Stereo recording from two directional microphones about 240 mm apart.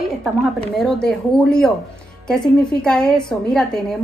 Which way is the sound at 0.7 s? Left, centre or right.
Centre.